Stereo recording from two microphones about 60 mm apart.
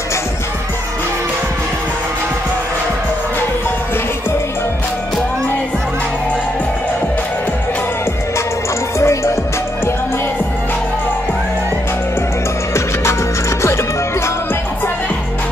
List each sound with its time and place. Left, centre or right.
9.0 s music: left